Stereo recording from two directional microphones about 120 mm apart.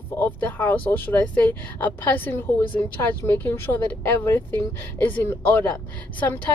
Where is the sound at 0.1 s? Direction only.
15° left (ahead or behind).